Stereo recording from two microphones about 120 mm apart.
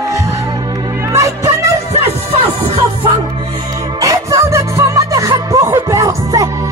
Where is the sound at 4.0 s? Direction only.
25° right (ahead or behind).